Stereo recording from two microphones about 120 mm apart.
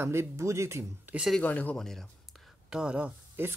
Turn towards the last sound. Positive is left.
turn(degrees=-15)  # may be behind; listen again after turning